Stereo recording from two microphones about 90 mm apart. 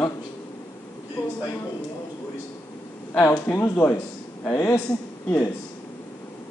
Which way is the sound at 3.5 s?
20° left (ahead or behind).